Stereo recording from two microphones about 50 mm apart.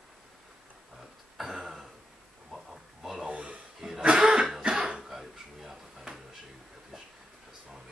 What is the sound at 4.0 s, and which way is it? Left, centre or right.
Cough, centre.